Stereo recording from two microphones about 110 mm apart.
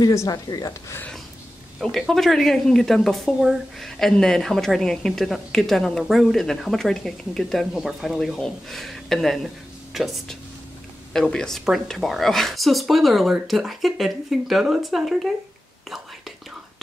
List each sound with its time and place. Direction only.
0.0 s speech: 30° left (ahead or behind)
1.8 s speech: 5° left (ahead or behind)